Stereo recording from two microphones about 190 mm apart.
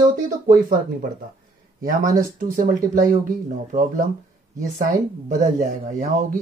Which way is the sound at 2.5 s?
45° right (ahead or behind).